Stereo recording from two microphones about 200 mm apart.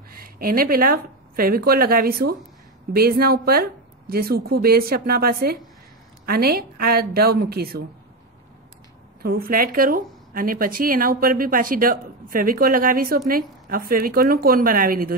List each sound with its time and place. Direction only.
0.1 s a woman's voice: 45° right (ahead or behind)
9.2 s a woman's voice: 50° right (ahead or behind)